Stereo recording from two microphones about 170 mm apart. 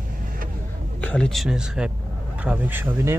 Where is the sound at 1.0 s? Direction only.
5° left (ahead or behind); by 3.2 s 10° right (ahead or behind).